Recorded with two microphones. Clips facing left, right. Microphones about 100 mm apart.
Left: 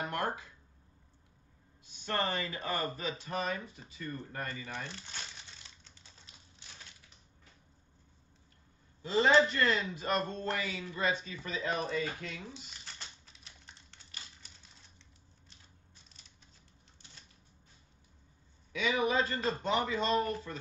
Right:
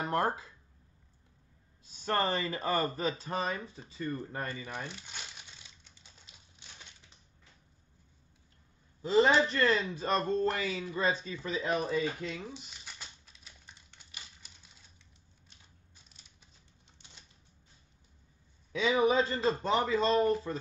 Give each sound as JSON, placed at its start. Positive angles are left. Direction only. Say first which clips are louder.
{"t": 0.0, "sound": "speech", "louder": "right 5 dB", "side_deg": -30}
{"t": 1.9, "sound": "speech", "louder": "right 4 dB", "side_deg": -40}
{"t": 4.3, "sound": "crumpling", "louder": "right 2 dB", "side_deg": -20}
{"t": 9.0, "sound": "a man's voice", "louder": "right 1 dB", "side_deg": -30}
{"t": 11.5, "sound": "speech", "louder": "right 3 dB", "side_deg": -15}
{"t": 12.4, "sound": "a sound", "louder": "right 3 dB", "side_deg": -10}
{"t": 18.7, "sound": "speech", "louder": "right 4 dB", "side_deg": -30}